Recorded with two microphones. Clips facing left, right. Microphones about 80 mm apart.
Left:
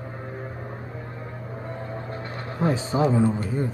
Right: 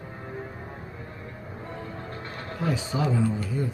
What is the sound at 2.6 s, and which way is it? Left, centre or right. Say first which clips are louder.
A man's voice: left 5 dB; left.